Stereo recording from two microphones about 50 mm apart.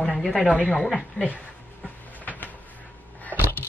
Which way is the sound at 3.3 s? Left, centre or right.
Right.